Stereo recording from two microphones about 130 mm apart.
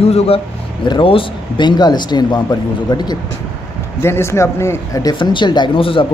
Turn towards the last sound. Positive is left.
turn(degrees=40)  # may be behind; listen again after turning